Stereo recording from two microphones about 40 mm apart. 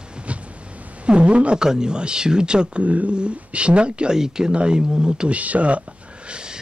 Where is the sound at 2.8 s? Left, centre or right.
Right.